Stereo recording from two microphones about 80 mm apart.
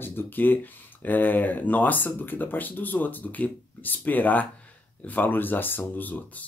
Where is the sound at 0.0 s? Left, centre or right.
Left.